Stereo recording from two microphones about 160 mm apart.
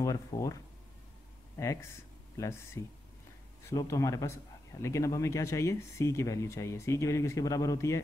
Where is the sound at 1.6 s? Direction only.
20° left (ahead or behind).